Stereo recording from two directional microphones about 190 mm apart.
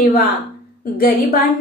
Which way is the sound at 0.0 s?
50° left (ahead or behind).